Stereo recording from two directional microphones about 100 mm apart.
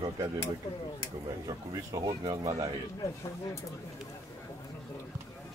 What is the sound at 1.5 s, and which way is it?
Speech, 40° right (ahead or behind).